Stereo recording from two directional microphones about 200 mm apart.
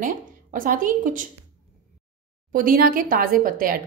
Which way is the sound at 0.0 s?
40° right (ahead or behind).